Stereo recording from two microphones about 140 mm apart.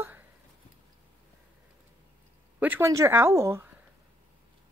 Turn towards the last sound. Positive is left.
turn(degrees=-20)  # may be behind; listen again after turning